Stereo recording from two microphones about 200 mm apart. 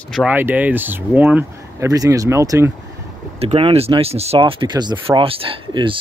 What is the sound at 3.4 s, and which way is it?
Speech, 30° right (ahead or behind).